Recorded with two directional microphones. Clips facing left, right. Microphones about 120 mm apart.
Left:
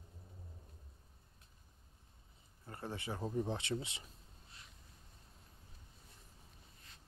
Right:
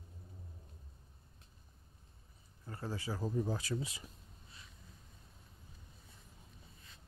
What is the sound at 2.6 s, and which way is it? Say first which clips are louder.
Speech: right 2 dB; 25° left (ahead or behind).